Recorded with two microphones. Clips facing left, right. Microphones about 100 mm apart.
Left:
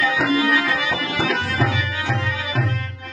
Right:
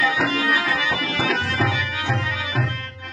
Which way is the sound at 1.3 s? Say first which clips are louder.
Left 1 dB; centre (ahead or behind).